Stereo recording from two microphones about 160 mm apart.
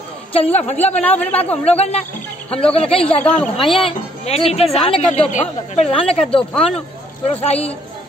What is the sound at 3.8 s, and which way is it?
Speech, 35° left (ahead or behind).